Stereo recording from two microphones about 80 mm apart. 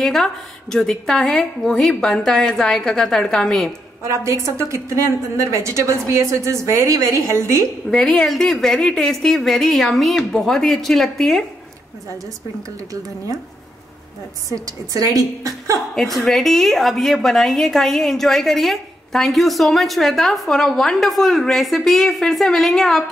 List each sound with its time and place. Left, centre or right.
0.0 s a woman's voice: centre
4.0 s a woman's voice: right
7.9 s a woman's voice: centre
14.5 s a woman's voice: right
15.9 s a woman's voice: centre